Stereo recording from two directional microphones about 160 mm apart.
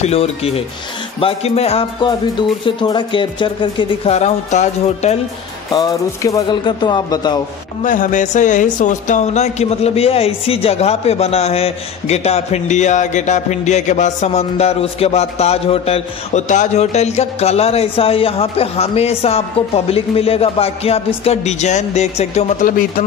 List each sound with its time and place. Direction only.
0.0 s speech: 40° left (ahead or behind)
5.7 s speech: 25° left (ahead or behind)
7.8 s speech: 55° left (ahead or behind)